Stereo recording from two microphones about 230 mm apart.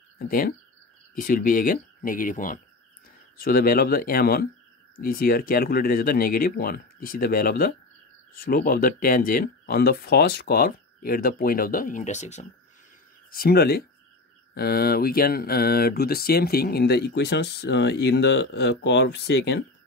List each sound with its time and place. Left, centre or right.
0.3 s speech: left
13.3 s speech: left